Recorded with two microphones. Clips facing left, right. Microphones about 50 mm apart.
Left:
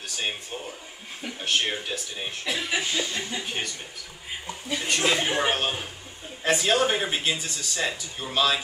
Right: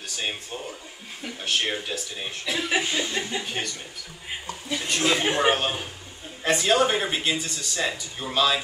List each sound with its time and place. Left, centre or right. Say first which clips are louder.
0.0 s speech: even; centre
2.7 s chuckle: right 4 dB; right
3.4 s speech: right 1 dB; centre